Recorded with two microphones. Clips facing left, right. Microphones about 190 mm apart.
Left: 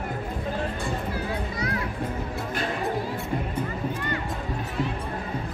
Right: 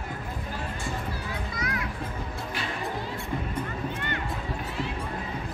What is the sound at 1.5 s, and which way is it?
Children playing, 35° left (ahead or behind).